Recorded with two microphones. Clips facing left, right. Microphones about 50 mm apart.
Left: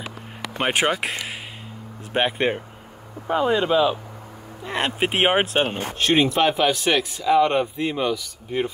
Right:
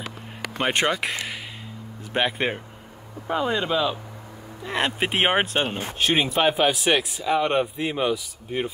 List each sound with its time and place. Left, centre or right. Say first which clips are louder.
0.6 s speech: left 1 dB; centre
2.1 s speech: left 2 dB; centre